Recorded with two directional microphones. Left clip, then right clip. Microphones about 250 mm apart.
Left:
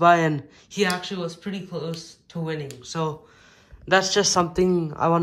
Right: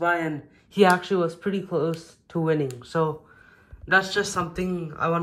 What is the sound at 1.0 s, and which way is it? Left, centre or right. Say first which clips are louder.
Speech: right 6 dB; centre.